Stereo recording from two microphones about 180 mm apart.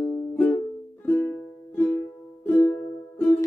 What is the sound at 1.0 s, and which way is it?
Music, 10° left (ahead or behind).